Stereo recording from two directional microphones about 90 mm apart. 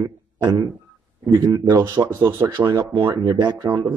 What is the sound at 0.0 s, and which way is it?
Speech, 55° right (ahead or behind).